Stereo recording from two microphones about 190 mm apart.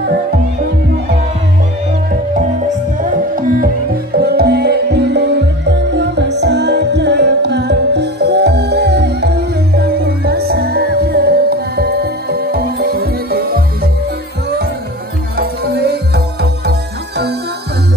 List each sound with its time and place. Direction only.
3.0 s music: 45° right (ahead or behind)
15.3 s music: 55° right (ahead or behind)